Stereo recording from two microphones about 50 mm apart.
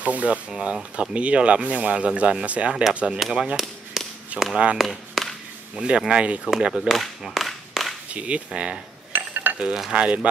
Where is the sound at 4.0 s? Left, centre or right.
Centre.